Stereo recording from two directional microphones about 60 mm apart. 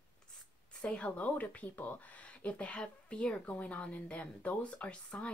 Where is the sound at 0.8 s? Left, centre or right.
Left.